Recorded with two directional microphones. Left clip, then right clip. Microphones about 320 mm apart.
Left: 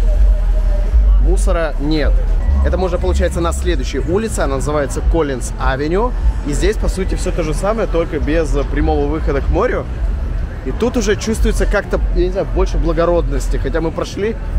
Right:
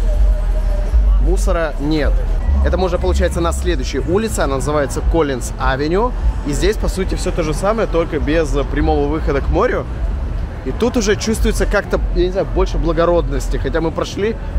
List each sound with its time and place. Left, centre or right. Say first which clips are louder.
1.3 s speech: even; centre